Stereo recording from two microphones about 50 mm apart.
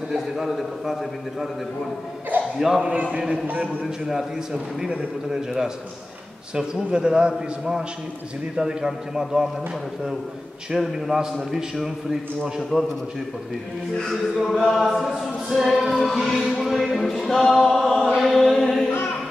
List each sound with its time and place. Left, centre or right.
0.4 s a capella: centre
2.3 s a sound: right
2.8 s a man's voice: right
3.8 s a man's voice: centre
10.7 s a man's voice: centre
14.0 s a capella: centre
18.1 s chant: centre